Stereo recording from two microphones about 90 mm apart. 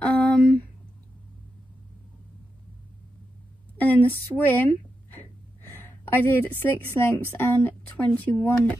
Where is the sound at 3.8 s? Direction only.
20° left (ahead or behind).